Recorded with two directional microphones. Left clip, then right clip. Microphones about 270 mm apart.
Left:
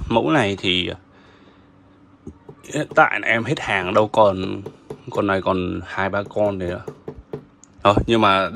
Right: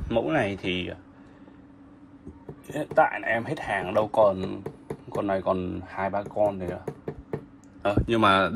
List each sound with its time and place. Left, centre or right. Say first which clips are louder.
0.1 s speech: left 7 dB; centre
2.7 s speech: left 6 dB; left
8.2 s speech: left 4 dB; centre